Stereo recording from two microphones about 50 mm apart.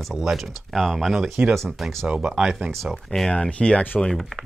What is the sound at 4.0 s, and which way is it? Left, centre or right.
Speech, centre.